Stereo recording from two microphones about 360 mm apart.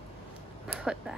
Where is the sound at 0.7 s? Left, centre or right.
Centre.